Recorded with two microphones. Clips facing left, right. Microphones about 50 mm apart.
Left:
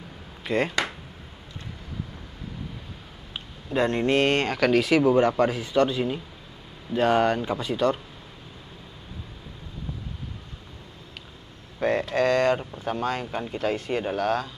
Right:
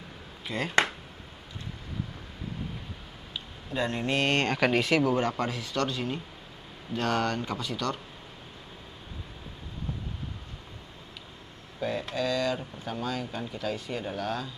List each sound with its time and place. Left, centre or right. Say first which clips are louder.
0.4 s a sound: left 8 dB; left
3.3 s speech: left 6 dB; left
4.6 s speech: left 4 dB; centre
4.8 s speech: left 6 dB; centre
11.8 s a sound: left 7 dB; left
12.5 s speech: left 6 dB; left